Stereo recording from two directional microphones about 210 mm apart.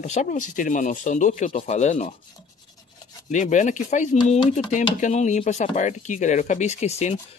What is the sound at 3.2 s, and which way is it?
Speech, 35° left (ahead or behind).